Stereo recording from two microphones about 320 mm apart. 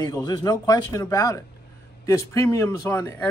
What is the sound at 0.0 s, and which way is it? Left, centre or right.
Speech, centre.